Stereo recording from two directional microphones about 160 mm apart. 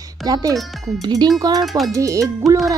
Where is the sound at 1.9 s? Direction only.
20° right (ahead or behind).